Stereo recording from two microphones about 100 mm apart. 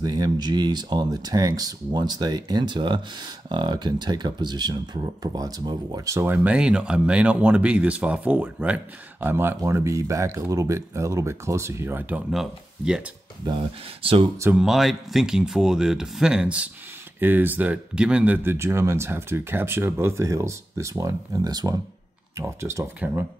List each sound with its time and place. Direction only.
0.0 s speech: 45° right (ahead or behind)
6.0 s speech: 30° right (ahead or behind)
6.3 s speech: 15° right (ahead or behind)
12.3 s speech: 5° right (ahead or behind)
13.5 s speech: 60° right (ahead or behind)
14.5 s speech: 5° right (ahead or behind); by 21.7 s 40° right (ahead or behind)
22.4 s speech: 30° right (ahead or behind)